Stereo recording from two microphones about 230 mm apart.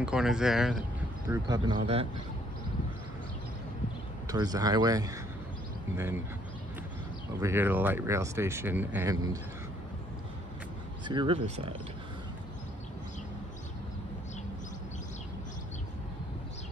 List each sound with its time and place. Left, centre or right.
0.0 s speech: centre
1.3 s speech: centre
4.3 s speech: centre
7.3 s speech: centre
11.1 s speech: right